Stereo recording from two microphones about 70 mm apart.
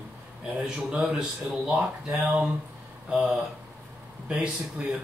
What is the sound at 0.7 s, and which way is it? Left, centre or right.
Speech, centre.